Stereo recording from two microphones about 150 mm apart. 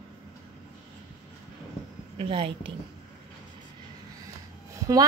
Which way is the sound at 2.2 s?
35° right (ahead or behind).